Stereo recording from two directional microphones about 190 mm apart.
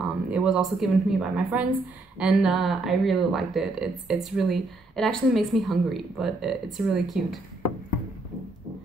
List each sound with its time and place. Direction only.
0.3 s speech: 5° right (ahead or behind)